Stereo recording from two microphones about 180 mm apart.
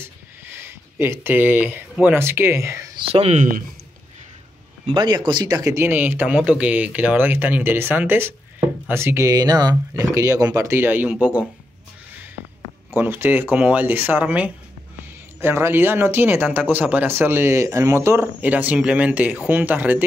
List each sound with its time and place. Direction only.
0.6 s speech: 15° right (ahead or behind)
3.1 s speech: 35° right (ahead or behind)
4.9 s speech: 25° right (ahead or behind); by 11.4 s 10° right (ahead or behind)
12.9 s speech: 10° right (ahead or behind)